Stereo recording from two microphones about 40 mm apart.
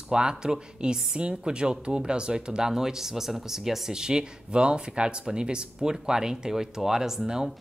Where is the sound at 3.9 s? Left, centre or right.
Centre.